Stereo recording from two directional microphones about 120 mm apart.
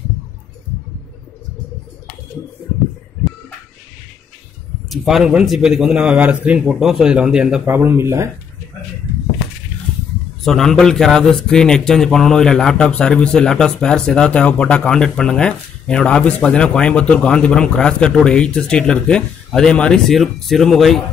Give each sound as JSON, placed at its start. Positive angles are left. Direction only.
{"t": 4.8, "sound": "a man's voice", "side_deg": 0}
{"t": 7.6, "sound": "speech", "side_deg": -15}
{"t": 10.4, "sound": "a man's voice", "side_deg": 5}